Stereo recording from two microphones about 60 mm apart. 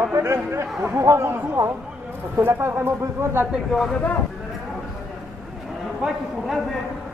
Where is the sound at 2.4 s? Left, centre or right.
Right.